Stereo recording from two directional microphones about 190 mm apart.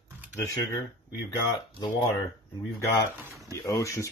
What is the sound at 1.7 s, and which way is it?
Speech, 20° left (ahead or behind).